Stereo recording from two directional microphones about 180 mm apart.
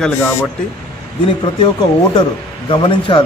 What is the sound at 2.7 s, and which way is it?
Speech, 25° left (ahead or behind).